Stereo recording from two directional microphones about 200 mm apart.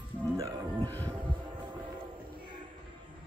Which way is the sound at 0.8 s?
10° left (ahead or behind).